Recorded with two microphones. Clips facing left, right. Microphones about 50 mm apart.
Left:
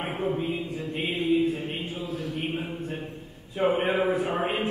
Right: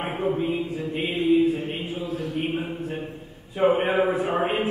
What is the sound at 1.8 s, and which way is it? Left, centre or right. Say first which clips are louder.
A man's voice: right 3 dB; centre.